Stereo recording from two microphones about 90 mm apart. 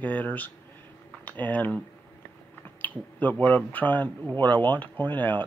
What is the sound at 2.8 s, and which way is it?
Speech, 20° left (ahead or behind).